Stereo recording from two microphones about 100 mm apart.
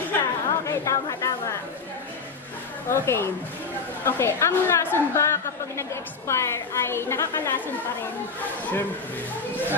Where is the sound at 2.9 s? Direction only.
25° left (ahead or behind).